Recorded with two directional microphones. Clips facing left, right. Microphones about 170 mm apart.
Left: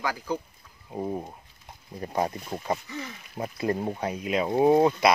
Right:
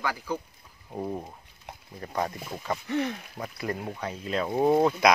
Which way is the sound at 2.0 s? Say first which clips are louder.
Left 3 dB; 25° left (ahead or behind).